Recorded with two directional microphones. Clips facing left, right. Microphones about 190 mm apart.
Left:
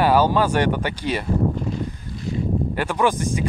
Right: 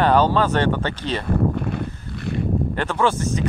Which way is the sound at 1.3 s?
60° right (ahead or behind).